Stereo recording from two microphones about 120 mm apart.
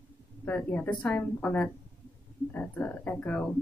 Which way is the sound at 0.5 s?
10° left (ahead or behind).